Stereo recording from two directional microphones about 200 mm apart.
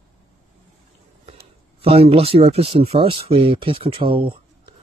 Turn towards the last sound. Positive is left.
turn(degrees=-25)  # may be behind; listen again after turning